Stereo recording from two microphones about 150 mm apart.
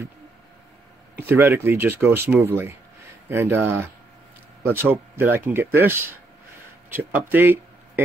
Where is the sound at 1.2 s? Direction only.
15° right (ahead or behind).